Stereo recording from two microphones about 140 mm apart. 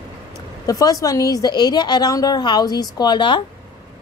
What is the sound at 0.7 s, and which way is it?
A woman's voice, 25° left (ahead or behind).